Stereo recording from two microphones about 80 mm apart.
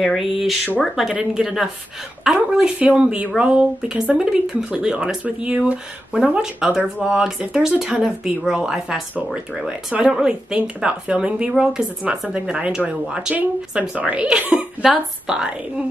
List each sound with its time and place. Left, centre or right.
0.0 s a woman's voice: centre; by 14.7 s right
14.8 s speech: centre